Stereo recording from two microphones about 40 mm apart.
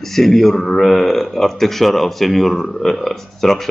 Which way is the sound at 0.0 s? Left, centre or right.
Centre.